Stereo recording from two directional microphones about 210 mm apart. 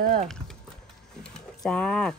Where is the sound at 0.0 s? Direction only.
45° right (ahead or behind).